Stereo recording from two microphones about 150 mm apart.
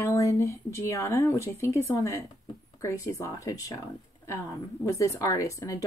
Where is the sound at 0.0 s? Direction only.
20° left (ahead or behind).